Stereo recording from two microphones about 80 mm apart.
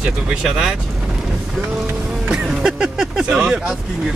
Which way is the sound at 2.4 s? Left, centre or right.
Centre.